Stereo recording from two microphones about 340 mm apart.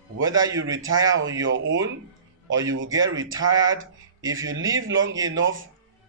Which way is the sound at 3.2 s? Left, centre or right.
Centre.